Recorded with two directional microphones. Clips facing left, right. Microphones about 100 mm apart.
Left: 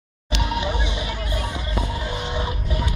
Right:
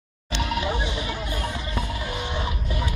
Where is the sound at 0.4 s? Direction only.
20° left (ahead or behind).